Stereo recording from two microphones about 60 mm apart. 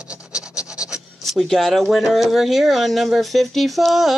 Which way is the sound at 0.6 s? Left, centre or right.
Centre.